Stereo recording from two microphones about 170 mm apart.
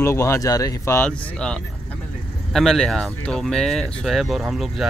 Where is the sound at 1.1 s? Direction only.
5° left (ahead or behind).